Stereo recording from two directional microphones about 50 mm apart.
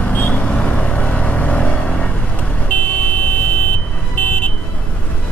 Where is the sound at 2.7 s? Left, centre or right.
Left.